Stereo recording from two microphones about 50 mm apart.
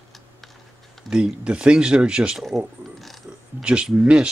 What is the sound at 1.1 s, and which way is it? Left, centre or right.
Speech, centre.